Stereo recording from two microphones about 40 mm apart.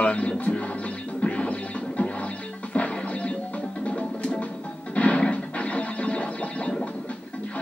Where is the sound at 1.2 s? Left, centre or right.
Left.